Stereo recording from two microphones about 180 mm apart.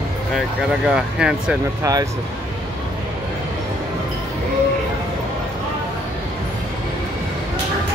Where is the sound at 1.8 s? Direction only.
20° right (ahead or behind).